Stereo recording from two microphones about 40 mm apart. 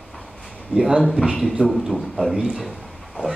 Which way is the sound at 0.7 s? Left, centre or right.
Centre.